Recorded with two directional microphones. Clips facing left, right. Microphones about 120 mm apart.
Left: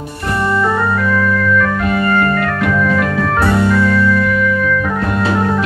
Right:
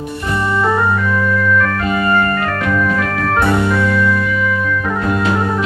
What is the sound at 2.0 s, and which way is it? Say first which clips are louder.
Organ: even; 5° right (ahead or behind).